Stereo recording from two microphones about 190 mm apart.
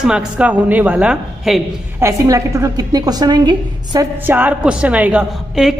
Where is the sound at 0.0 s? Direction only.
5° right (ahead or behind).